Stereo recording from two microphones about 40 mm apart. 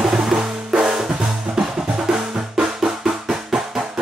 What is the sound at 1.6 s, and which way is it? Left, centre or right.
Music, centre.